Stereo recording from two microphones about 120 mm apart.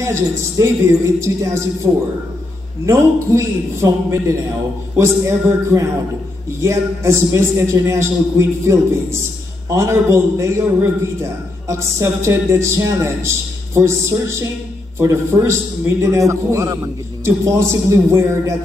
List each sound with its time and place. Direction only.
0.0 s a man's voice: 25° right (ahead or behind)